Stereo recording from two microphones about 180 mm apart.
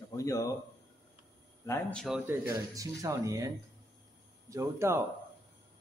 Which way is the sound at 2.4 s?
20° right (ahead or behind).